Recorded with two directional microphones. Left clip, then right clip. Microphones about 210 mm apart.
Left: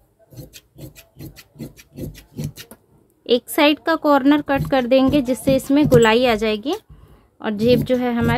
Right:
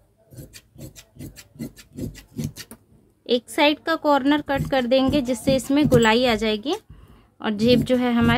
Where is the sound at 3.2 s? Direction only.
20° left (ahead or behind); by 8.3 s 5° left (ahead or behind).